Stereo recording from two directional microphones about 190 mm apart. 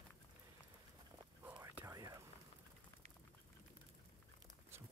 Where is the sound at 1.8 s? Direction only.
15° right (ahead or behind).